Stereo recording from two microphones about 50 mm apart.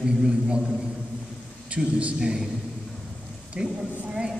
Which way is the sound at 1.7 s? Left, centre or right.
Right.